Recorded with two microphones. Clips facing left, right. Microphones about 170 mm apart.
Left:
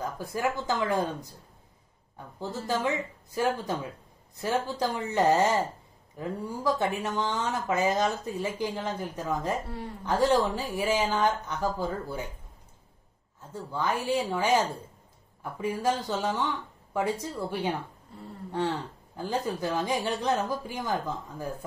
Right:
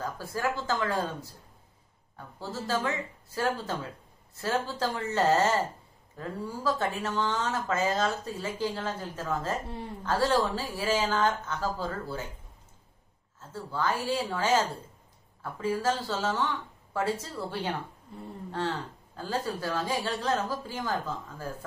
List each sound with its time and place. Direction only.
0.0 s speech: 20° left (ahead or behind)
13.4 s speech: 15° left (ahead or behind)